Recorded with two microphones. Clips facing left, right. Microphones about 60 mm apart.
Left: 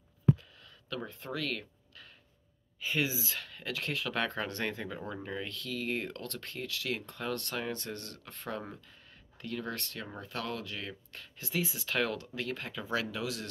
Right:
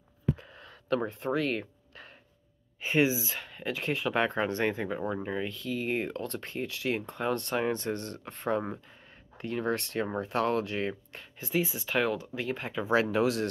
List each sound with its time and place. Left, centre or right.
0.4 s a sound: right
1.2 s speech: right
3.2 s speech: centre
11.4 s speech: centre
12.9 s speech: right